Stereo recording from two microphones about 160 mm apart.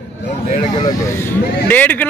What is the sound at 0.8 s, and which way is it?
Speech, 20° left (ahead or behind).